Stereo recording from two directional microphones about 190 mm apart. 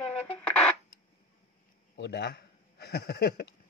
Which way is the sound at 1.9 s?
65° left (ahead or behind).